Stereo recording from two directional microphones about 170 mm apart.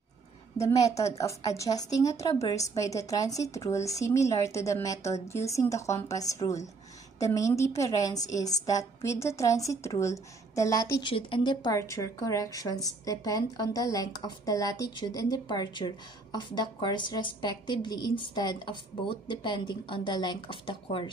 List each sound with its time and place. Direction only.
0.6 s a woman's voice: 20° left (ahead or behind)